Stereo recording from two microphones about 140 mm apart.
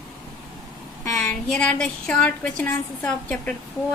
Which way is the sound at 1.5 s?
5° left (ahead or behind).